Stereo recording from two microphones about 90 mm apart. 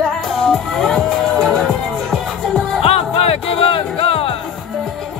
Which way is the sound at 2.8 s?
90° left.